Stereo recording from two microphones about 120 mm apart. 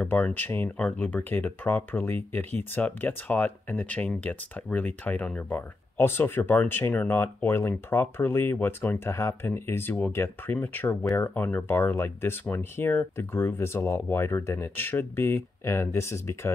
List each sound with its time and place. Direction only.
0.0 s speech: 15° left (ahead or behind)